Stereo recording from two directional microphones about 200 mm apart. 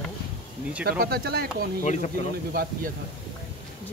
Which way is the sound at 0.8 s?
50° right (ahead or behind).